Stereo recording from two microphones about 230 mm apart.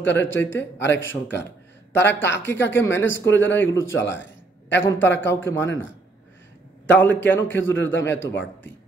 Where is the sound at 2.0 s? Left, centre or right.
Left.